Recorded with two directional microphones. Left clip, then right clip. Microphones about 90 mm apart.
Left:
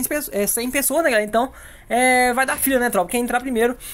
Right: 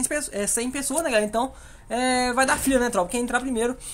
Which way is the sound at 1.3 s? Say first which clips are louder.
Left 5 dB; 35° left (ahead or behind).